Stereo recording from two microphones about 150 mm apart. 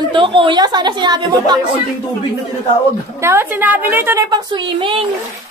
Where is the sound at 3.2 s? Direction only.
15° right (ahead or behind).